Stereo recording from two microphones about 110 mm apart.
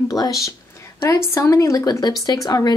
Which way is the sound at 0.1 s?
30° left (ahead or behind).